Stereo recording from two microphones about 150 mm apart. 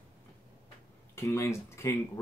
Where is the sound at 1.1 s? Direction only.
20° left (ahead or behind).